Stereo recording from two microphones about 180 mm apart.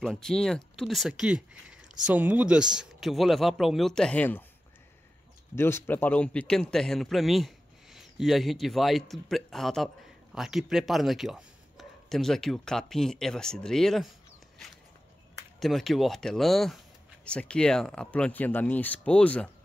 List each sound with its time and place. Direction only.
0.0 s speech: 5° left (ahead or behind)
5.6 s speech: 15° left (ahead or behind)
15.6 s speech: centre (ahead or behind)